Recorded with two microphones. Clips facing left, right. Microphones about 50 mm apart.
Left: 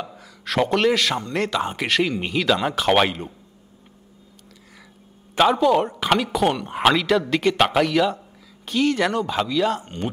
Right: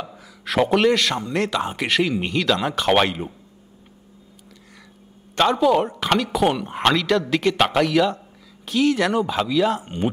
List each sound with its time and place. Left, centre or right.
0.0 s speech: centre
5.3 s speech: centre